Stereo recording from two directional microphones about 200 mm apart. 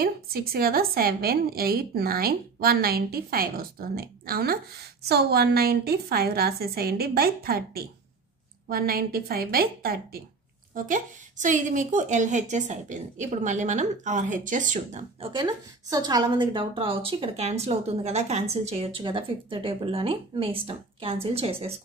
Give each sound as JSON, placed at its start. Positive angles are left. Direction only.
{"t": 0.0, "sound": "a woman's voice", "side_deg": -50}